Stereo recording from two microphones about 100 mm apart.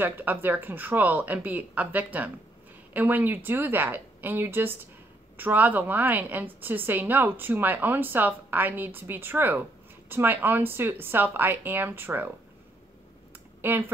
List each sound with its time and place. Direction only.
0.0 s a woman's voice: 20° right (ahead or behind)
13.6 s speech: 20° right (ahead or behind)